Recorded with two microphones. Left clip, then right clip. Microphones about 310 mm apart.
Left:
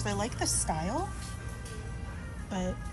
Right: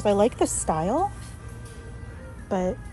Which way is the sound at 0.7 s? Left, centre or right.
Right.